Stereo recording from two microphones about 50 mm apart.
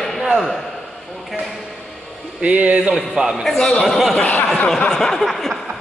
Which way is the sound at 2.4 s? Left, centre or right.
Right.